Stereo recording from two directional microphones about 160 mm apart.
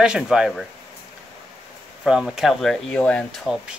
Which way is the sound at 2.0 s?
5° right (ahead or behind).